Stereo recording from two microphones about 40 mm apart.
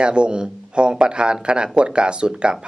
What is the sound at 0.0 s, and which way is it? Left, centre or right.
Speech, right.